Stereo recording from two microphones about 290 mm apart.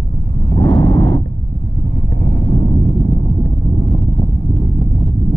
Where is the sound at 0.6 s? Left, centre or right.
Centre.